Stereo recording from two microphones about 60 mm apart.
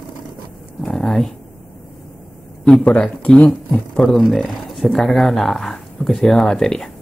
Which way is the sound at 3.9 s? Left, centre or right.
Centre.